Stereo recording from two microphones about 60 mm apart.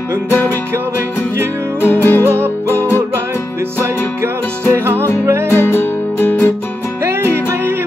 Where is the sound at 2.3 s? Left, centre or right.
Right.